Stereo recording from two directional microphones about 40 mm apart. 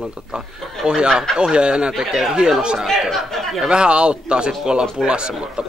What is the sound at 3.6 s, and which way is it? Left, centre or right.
Speech, right.